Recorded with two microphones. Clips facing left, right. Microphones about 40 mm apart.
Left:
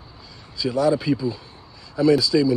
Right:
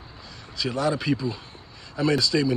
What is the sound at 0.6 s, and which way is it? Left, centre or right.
Speech, right.